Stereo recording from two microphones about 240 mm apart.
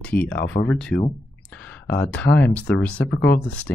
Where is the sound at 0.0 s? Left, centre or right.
Centre.